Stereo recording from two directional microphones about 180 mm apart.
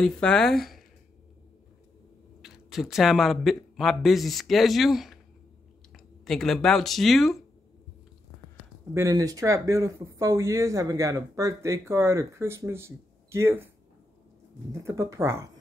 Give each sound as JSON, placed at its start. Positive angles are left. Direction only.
{"t": 0.0, "sound": "speech", "side_deg": 5}
{"t": 2.4, "sound": "a man's voice", "side_deg": 0}
{"t": 6.2, "sound": "speech", "side_deg": 0}
{"t": 8.9, "sound": "speech", "side_deg": -15}
{"t": 14.7, "sound": "speech", "side_deg": -15}